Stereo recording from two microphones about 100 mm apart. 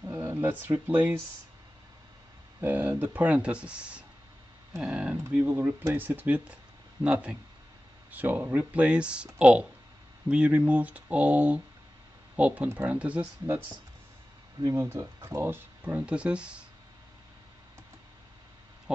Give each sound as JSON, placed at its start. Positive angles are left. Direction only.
{"t": 0.0, "sound": "a sound", "side_deg": -20}
{"t": 0.7, "sound": "speech", "side_deg": -20}
{"t": 2.6, "sound": "speech", "side_deg": -20}
{"t": 5.2, "sound": "speech", "side_deg": -25}
{"t": 14.6, "sound": "speech", "side_deg": -35}
{"t": 18.9, "sound": "speech", "side_deg": -10}